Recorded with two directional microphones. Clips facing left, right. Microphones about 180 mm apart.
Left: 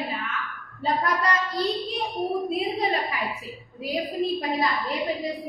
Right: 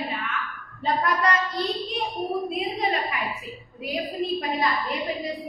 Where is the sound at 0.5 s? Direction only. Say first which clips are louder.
Even; centre (ahead or behind).